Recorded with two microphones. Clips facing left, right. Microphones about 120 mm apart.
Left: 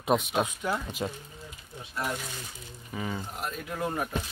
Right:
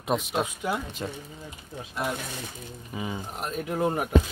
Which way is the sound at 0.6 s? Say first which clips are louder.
Right 1 dB; 10° right (ahead or behind).